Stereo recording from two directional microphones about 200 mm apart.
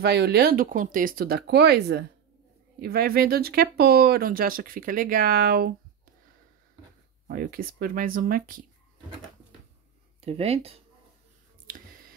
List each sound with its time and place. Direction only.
0.0 s speech: 55° right (ahead or behind)
7.2 s speech: 50° right (ahead or behind)
10.2 s speech: 30° right (ahead or behind)